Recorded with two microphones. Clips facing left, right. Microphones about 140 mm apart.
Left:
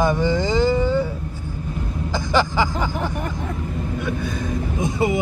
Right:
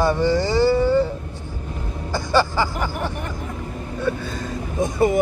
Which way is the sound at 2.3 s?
15° left (ahead or behind).